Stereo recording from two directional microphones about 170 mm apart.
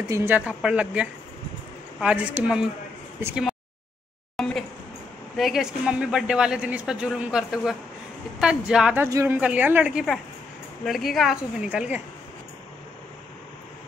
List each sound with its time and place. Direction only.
0.1 s a woman's voice: 15° right (ahead or behind)
4.4 s a sound: centre (ahead or behind)
5.4 s speech: 5° right (ahead or behind)
9.0 s a woman's voice: 15° right (ahead or behind)